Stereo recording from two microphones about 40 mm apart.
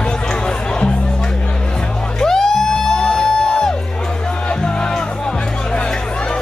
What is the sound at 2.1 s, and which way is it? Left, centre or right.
Music, centre.